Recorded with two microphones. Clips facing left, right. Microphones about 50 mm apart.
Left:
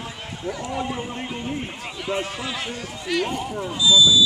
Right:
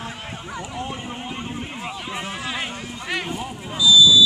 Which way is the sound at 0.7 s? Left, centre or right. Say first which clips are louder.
Left 2 dB; left.